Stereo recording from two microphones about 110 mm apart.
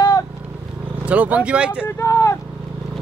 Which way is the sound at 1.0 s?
15° right (ahead or behind).